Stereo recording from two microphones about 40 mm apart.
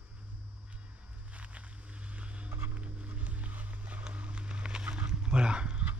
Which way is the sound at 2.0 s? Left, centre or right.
Right.